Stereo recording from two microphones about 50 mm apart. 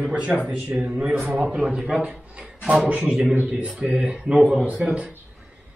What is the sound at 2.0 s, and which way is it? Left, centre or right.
Speech, right.